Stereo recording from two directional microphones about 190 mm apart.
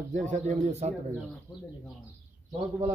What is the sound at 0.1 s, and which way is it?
Speech, 40° right (ahead or behind).